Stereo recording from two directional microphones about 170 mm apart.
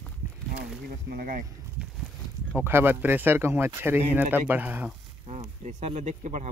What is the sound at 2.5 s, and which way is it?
Speech, 15° right (ahead or behind).